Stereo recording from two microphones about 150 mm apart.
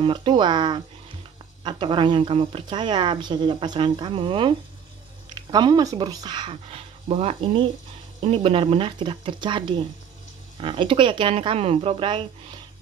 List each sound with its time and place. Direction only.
0.0 s speech: 30° right (ahead or behind)
6.5 s speech: 40° right (ahead or behind)